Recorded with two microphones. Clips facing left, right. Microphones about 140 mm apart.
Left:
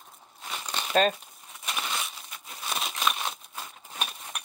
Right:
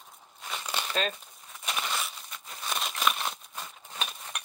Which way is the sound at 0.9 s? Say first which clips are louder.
Left 9 dB; 45° left (ahead or behind).